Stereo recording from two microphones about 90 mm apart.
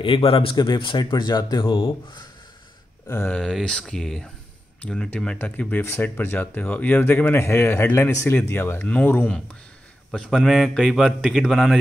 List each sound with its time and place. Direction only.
0.0 s speech: 80° left
0.6 s speech: 60° left (ahead or behind)
3.3 s speech: 10° left (ahead or behind)
10.1 s a man's voice: 5° left (ahead or behind)